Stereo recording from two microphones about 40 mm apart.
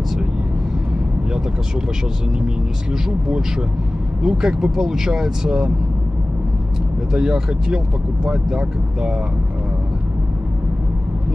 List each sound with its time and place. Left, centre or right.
4.2 s speech: centre
7.1 s speech: centre